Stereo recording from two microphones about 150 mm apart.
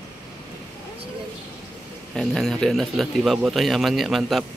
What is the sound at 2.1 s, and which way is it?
Speech, centre (ahead or behind).